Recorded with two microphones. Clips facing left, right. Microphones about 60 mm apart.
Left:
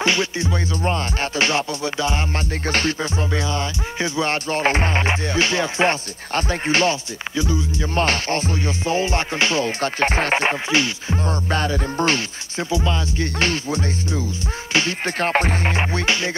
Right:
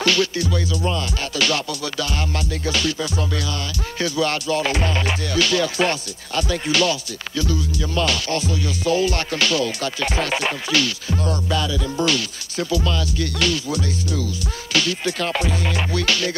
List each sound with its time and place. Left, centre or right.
0.0 s music: left
7.3 s music: left
11.4 s music: left
12.5 s music: left